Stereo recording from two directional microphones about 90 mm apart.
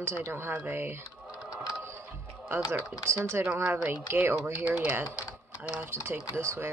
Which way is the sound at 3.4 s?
25° right (ahead or behind).